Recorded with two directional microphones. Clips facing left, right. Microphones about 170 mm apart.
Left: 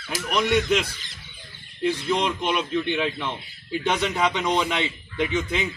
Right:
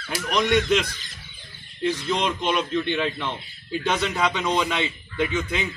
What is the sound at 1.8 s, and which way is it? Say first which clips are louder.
A man's voice: left 1 dB; 10° left (ahead or behind).